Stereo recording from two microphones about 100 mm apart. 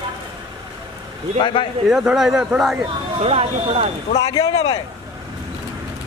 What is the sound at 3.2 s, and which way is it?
Speech, 90° right.